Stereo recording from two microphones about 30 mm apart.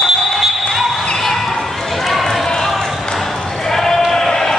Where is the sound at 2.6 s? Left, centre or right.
Centre.